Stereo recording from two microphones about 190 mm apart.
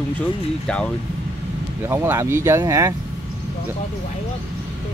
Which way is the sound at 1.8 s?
15° right (ahead or behind).